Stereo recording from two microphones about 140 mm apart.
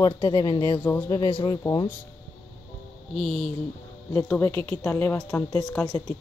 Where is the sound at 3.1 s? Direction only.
Centre (ahead or behind).